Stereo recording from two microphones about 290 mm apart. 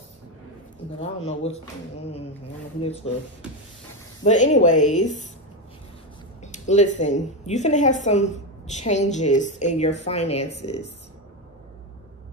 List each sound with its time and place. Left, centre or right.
0.9 s a woman's voice: left
2.8 s a woman's voice: left
4.2 s a woman's voice: left
6.4 s a woman's voice: left